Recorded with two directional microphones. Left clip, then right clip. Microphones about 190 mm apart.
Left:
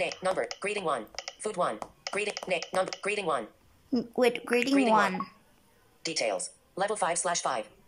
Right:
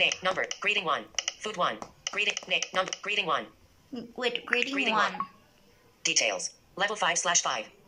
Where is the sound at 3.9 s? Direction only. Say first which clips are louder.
Left 5 dB; 25° left (ahead or behind).